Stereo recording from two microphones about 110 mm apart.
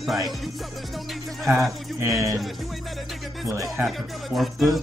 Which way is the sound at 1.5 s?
25° right (ahead or behind).